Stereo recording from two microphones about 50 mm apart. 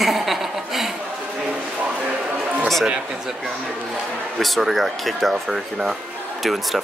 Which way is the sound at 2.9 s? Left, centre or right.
Centre.